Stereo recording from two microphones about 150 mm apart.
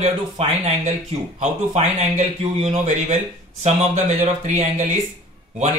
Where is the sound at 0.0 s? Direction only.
50° right (ahead or behind).